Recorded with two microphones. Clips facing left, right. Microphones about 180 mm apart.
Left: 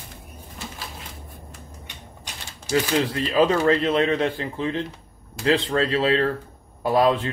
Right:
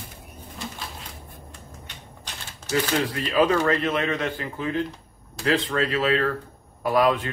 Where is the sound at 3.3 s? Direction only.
30° left (ahead or behind).